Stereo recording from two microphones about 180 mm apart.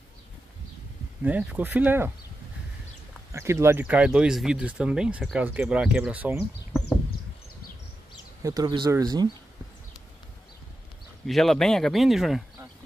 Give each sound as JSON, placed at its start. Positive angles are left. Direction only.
{"t": 1.2, "sound": "speech", "side_deg": -10}
{"t": 3.3, "sound": "speech", "side_deg": -15}
{"t": 8.4, "sound": "speech", "side_deg": -20}
{"t": 11.2, "sound": "speech", "side_deg": 0}